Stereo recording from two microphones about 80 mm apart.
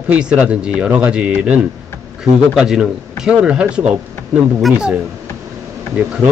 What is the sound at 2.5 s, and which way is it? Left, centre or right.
Speech, centre.